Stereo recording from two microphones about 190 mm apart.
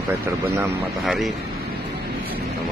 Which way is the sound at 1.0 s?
Centre (ahead or behind).